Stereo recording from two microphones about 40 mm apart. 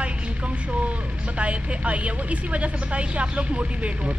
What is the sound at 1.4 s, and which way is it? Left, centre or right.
Speech, right.